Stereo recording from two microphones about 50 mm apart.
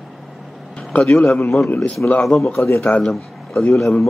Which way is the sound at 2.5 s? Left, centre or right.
Left.